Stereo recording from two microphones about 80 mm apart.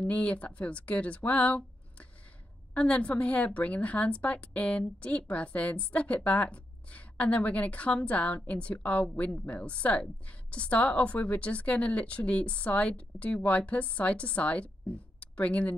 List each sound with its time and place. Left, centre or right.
0.0 s a woman's voice: centre